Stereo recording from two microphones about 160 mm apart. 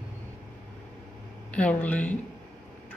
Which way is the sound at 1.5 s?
10° left (ahead or behind).